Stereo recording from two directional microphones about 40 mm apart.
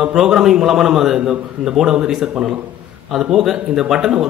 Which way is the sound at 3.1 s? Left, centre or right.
Centre.